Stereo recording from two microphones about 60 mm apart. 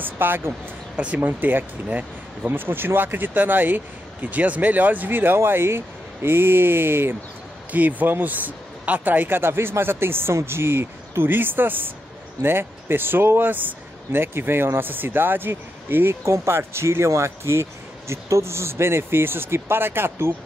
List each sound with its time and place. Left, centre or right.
0.0 s speech: right
0.9 s speech: right
7.7 s speech: right